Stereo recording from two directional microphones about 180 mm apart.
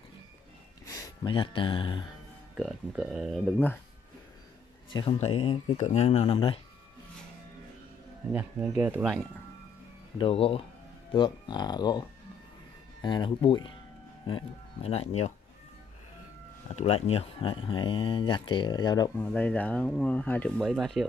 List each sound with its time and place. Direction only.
1.0 s speech: 25° left (ahead or behind)
2.5 s speech: 5° right (ahead or behind)
4.9 s speech: 30° left (ahead or behind)
8.3 s speech: 10° right (ahead or behind)
10.1 s speech: 30° left (ahead or behind)
16.7 s speech: 35° left (ahead or behind)
19.1 s speech: 5° left (ahead or behind)